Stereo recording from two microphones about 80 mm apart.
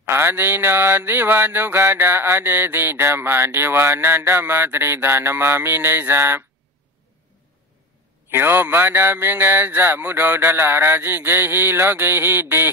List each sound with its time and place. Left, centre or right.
0.0 s mantra: right
8.3 s mantra: right